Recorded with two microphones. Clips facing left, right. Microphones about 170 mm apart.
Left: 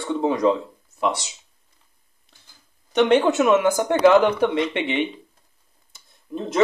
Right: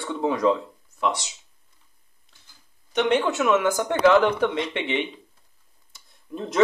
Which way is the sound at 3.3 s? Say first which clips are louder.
Left 4 dB; 15° left (ahead or behind).